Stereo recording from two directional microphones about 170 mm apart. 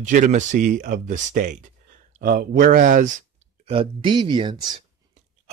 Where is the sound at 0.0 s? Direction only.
50° right (ahead or behind).